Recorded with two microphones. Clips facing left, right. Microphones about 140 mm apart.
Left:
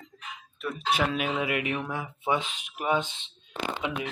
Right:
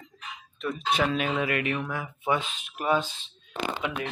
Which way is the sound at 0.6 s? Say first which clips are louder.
Right 1 dB; 5° left (ahead or behind).